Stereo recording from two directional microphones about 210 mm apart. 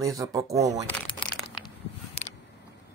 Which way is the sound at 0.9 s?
5° left (ahead or behind).